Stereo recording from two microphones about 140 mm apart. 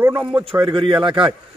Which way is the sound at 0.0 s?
15° right (ahead or behind).